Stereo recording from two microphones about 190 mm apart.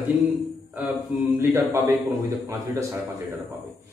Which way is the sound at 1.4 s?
15° right (ahead or behind).